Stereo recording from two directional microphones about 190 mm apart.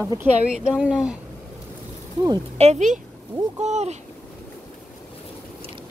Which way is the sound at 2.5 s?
35° right (ahead or behind).